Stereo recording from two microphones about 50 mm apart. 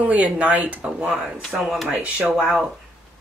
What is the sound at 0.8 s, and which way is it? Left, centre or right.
Speech, centre.